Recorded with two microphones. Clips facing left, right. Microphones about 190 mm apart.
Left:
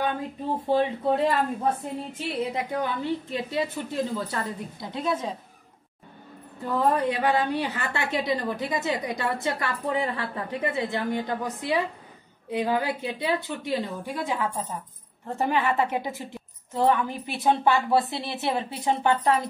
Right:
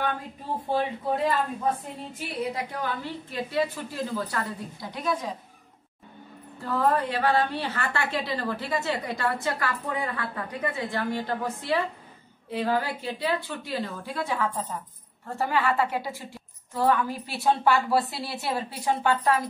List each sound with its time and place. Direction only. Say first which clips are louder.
0.7 s a woman's voice: left 3 dB; 25° left (ahead or behind)
6.6 s a woman's voice: left 1 dB; 20° left (ahead or behind)